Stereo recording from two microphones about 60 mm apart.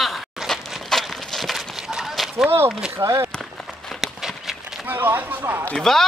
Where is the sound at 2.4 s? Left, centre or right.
Right.